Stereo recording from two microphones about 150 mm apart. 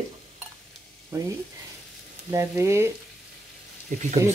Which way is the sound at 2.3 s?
20° right (ahead or behind).